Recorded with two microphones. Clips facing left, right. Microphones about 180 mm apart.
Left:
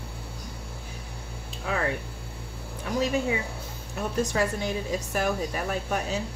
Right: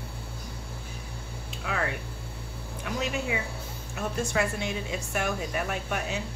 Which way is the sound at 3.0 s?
35° left (ahead or behind).